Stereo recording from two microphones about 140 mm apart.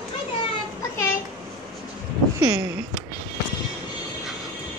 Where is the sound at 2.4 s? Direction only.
25° right (ahead or behind).